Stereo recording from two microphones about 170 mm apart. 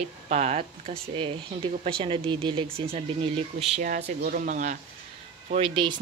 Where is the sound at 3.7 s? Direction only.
50° right (ahead or behind).